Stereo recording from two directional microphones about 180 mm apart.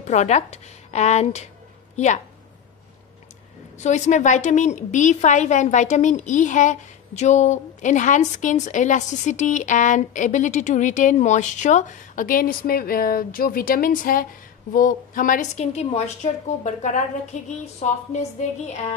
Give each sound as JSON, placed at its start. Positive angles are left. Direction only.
{"t": 0.0, "sound": "a woman's voice", "side_deg": 40}
{"t": 3.8, "sound": "a woman's voice", "side_deg": 40}